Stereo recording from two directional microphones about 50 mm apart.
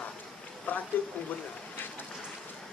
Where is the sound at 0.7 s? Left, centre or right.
Left.